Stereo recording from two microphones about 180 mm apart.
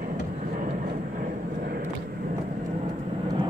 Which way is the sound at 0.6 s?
50° right (ahead or behind).